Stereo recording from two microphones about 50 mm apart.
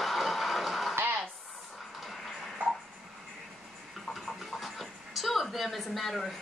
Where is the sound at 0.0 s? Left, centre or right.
Centre.